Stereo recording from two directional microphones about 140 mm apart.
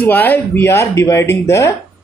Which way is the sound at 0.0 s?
15° left (ahead or behind).